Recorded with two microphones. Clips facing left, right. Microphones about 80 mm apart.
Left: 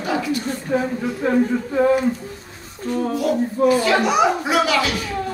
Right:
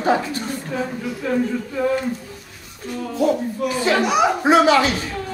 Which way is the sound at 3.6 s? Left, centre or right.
Left.